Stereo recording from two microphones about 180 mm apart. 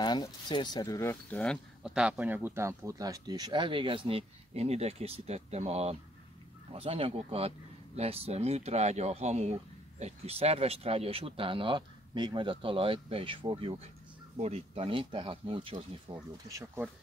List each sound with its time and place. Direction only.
0.0 s speech: 25° left (ahead or behind); by 16.2 s 30° right (ahead or behind)
16.4 s speech: 15° right (ahead or behind)